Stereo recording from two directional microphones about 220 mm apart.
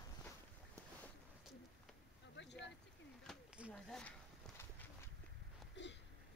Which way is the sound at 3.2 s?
Centre (ahead or behind).